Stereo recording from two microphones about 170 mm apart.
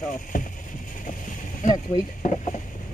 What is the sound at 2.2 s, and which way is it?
Speech, 45° left (ahead or behind).